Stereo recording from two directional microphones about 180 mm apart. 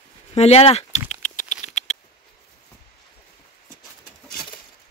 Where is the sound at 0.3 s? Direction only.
35° left (ahead or behind).